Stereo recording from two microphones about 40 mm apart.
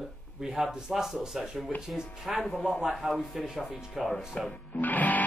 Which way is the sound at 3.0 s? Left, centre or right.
Centre.